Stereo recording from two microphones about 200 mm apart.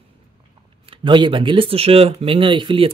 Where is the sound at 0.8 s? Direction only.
25° right (ahead or behind).